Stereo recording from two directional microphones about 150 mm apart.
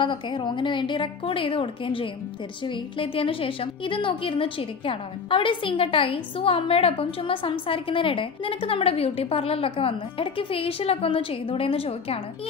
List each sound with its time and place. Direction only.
0.0 s a woman's voice: 35° left (ahead or behind)